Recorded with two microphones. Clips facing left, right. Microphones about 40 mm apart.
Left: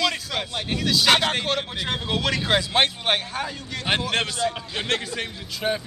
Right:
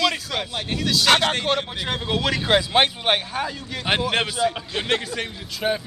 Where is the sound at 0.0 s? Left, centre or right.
Centre.